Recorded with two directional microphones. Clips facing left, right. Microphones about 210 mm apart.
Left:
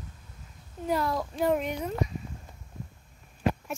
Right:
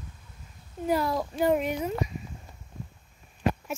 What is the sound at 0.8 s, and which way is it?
Speech, 5° right (ahead or behind).